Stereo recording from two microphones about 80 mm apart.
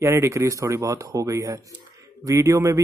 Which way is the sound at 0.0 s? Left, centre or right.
Right.